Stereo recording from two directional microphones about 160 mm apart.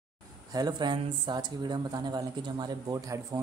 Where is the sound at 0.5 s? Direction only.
25° right (ahead or behind).